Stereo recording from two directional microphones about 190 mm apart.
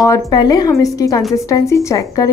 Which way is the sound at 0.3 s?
20° left (ahead or behind).